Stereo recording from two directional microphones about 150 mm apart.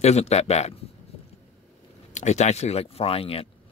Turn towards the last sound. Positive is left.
turn(degrees=40)  # may be behind; listen again after turning